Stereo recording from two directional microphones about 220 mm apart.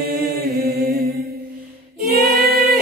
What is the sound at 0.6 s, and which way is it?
Mantra, 45° right (ahead or behind).